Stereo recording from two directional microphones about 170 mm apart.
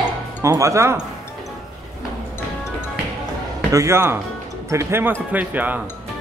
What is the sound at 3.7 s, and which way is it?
Speech, 15° right (ahead or behind).